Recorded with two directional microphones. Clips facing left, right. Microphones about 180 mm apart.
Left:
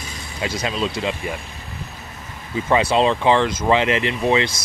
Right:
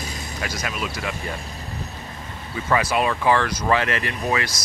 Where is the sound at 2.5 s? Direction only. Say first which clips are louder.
Left 4 dB; 25° left (ahead or behind).